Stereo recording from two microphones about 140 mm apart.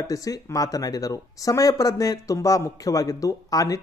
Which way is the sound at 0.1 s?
25° left (ahead or behind).